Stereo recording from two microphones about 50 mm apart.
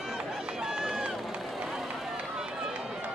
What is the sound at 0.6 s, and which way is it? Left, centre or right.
Run, centre.